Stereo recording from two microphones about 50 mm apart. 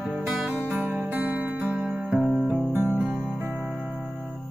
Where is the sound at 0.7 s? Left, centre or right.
Right.